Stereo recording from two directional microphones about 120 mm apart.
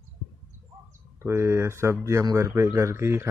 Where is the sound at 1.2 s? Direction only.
20° right (ahead or behind).